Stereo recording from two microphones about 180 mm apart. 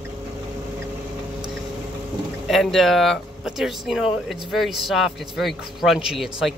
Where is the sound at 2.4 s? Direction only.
Centre (ahead or behind).